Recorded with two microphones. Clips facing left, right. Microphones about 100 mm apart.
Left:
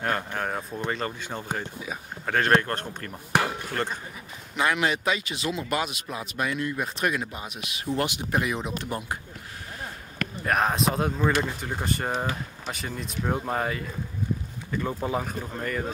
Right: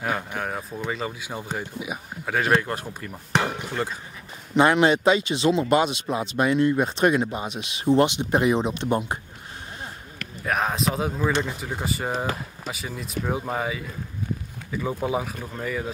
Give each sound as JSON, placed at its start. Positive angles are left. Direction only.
{"t": 0.0, "sound": "speech", "side_deg": -5}
{"t": 4.6, "sound": "speech", "side_deg": -30}
{"t": 10.4, "sound": "speech", "side_deg": 0}